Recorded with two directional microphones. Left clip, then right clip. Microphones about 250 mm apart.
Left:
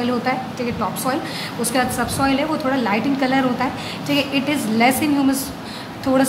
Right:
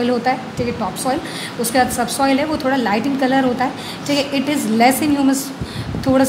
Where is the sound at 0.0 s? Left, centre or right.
Centre.